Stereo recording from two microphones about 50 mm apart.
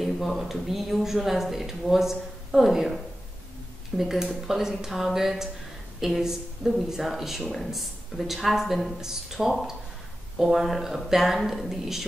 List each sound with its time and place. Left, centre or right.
0.0 s speech: centre
4.0 s speech: centre